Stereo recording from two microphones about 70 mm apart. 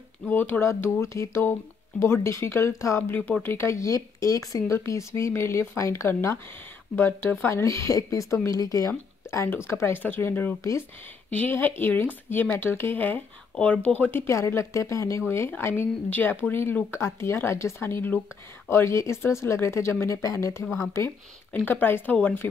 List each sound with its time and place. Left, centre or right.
0.3 s speech: left
0.6 s speech: left
3.1 s speech: left
3.4 s speech: left
4.7 s speech: left
10.0 s speech: left
14.2 s speech: left
21.6 s speech: left